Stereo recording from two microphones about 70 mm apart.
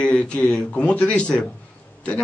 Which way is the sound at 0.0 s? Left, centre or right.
Centre.